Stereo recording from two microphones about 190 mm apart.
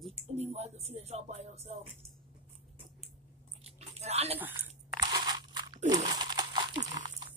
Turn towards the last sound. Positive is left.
turn(degrees=-40)  # may be behind; listen again after turning